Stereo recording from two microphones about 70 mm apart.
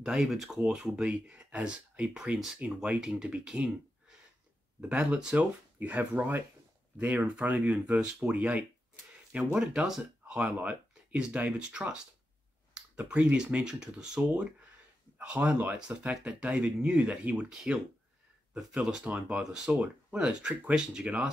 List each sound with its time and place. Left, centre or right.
0.0 s speech: centre
4.8 s speech: centre
9.5 s speech: centre
18.6 s speech: centre